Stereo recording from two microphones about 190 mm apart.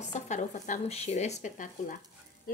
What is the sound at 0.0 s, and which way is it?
Speech, 40° left (ahead or behind).